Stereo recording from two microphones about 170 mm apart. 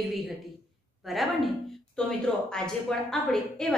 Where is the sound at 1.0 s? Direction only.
Centre (ahead or behind).